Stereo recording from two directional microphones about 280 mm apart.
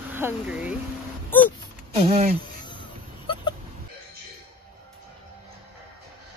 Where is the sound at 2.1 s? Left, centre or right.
Right.